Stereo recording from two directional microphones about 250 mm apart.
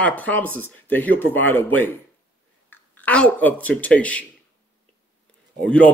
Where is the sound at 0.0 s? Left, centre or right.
Centre.